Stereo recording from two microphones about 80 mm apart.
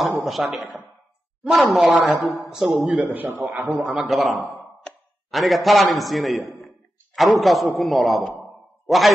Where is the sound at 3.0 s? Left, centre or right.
Right.